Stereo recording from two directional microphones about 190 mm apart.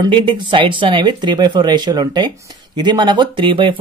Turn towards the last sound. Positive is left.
turn(degrees=-25)  # may be behind; listen again after turning